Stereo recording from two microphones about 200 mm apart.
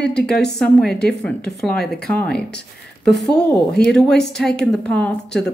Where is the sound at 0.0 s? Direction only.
5° left (ahead or behind).